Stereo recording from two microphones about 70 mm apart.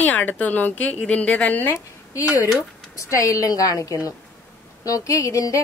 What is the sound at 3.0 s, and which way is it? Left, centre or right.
Speech, left.